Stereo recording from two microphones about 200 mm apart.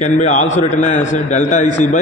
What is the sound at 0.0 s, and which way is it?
A man's voice, 35° left (ahead or behind).